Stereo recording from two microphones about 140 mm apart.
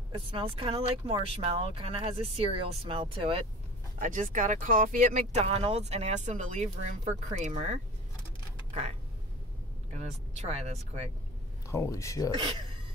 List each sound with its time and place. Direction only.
0.1 s speech: 40° right (ahead or behind)
4.0 s speech: 65° right (ahead or behind)
5.4 s speech: 45° right (ahead or behind)
9.9 s speech: 50° right (ahead or behind)
11.6 s speech: 20° left (ahead or behind)